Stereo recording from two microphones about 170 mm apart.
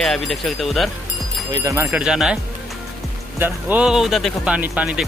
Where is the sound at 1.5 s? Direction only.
20° right (ahead or behind); by 2.3 s 5° right (ahead or behind).